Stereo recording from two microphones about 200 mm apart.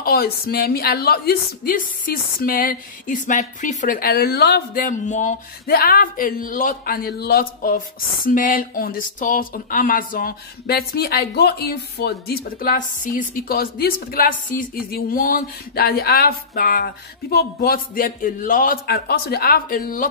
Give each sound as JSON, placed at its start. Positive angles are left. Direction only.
{"t": 0.0, "sound": "a woman's voice", "side_deg": 50}